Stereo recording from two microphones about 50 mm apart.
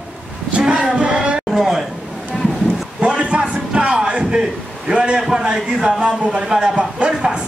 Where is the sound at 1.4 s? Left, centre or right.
Centre.